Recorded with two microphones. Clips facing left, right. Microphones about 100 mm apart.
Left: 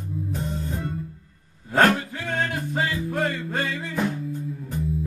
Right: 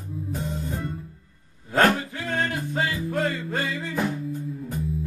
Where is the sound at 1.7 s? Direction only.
Centre (ahead or behind).